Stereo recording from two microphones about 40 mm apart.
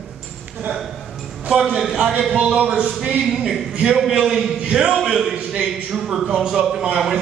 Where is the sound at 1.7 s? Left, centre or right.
Centre.